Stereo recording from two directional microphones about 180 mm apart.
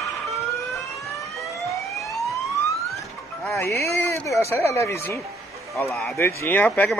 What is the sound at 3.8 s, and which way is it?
Speech, 15° left (ahead or behind).